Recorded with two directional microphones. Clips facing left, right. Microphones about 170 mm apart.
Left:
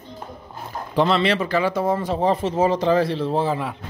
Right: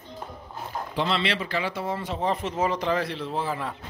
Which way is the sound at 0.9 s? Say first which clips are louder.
Left 8 dB; 45° left (ahead or behind).